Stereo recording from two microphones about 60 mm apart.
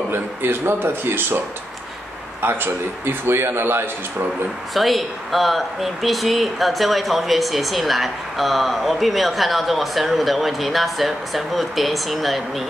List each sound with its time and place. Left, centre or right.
0.1 s a man's voice: right
2.4 s a man's voice: right
4.7 s speech: centre